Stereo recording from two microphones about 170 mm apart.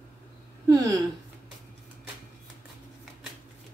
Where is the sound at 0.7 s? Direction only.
20° right (ahead or behind).